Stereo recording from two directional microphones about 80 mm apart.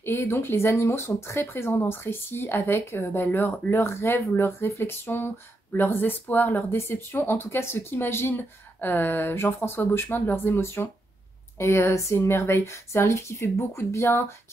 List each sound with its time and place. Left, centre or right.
0.0 s speech: left